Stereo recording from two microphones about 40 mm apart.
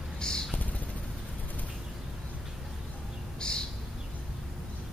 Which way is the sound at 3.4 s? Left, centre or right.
Left.